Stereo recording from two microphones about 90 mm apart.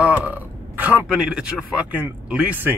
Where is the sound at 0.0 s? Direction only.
15° right (ahead or behind).